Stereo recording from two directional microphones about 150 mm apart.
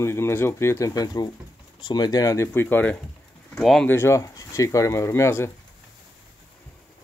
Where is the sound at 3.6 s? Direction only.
Centre (ahead or behind).